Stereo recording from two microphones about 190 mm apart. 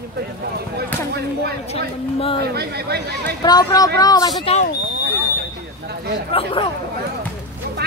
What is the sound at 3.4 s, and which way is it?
Speech, 20° left (ahead or behind).